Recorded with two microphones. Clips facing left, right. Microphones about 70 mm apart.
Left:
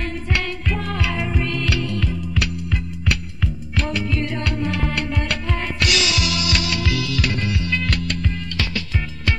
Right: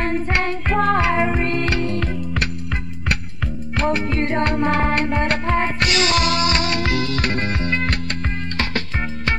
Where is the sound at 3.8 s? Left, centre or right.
Right.